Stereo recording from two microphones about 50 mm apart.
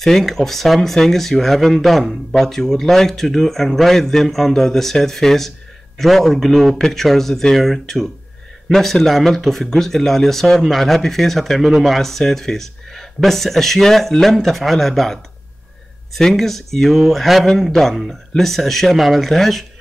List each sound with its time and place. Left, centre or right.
0.0 s speech: centre
16.2 s speech: centre